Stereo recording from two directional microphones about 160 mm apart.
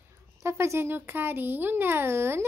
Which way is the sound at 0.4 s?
15° right (ahead or behind).